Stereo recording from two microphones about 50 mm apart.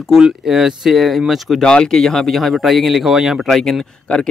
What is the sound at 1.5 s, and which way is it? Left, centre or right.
Speech, centre.